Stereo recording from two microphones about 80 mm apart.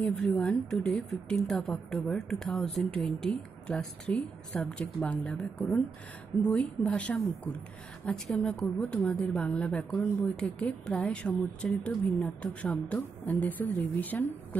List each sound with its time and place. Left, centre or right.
0.4 s speech: centre
8.3 s speech: centre